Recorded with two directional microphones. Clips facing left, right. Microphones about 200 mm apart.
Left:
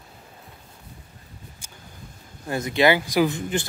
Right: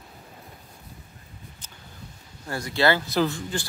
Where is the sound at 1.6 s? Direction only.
10° left (ahead or behind).